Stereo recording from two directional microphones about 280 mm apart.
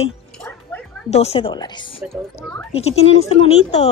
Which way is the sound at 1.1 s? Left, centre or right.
Left.